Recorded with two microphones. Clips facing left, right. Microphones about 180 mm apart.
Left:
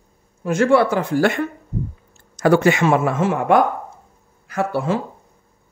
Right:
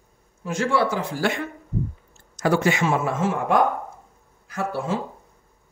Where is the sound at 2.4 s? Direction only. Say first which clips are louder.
Left 6 dB; 60° left (ahead or behind).